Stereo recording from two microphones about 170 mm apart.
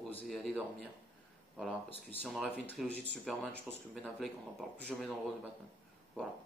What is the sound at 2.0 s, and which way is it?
Speech, centre (ahead or behind).